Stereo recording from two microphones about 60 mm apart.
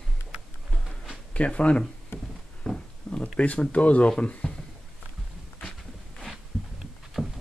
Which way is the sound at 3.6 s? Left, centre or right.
Left.